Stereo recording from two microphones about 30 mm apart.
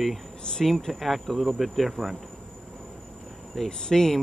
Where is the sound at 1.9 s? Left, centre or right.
Centre.